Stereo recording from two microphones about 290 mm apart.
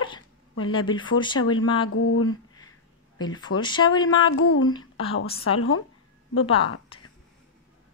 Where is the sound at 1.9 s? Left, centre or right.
Left.